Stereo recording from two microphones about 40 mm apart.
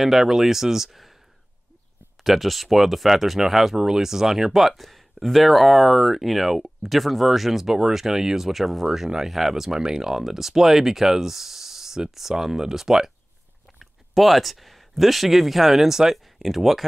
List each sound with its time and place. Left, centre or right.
0.0 s speech: centre
2.2 s speech: centre
13.7 s speech: centre